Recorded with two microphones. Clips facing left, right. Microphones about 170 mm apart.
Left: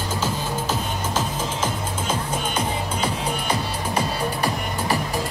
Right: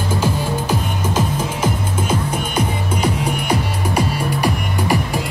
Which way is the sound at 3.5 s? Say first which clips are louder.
Right 5 dB; 10° right (ahead or behind).